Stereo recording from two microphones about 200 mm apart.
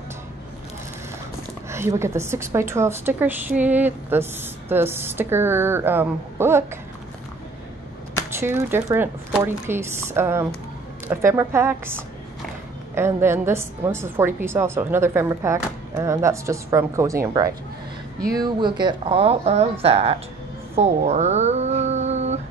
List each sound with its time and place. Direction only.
1.7 s a woman's voice: 15° right (ahead or behind)
8.4 s a woman's voice: 10° right (ahead or behind); by 20.2 s 30° right (ahead or behind)
20.7 s a sound: 35° right (ahead or behind)